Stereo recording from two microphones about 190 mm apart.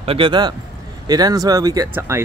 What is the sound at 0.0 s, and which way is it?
Speech, 30° right (ahead or behind).